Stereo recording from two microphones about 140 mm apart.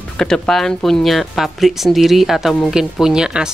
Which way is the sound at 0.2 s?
5° left (ahead or behind).